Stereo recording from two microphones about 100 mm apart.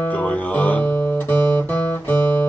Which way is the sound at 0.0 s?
15° left (ahead or behind).